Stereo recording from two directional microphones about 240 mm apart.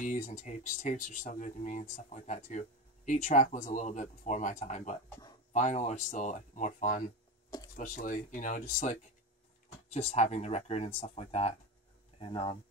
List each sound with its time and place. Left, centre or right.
0.0 s speech: left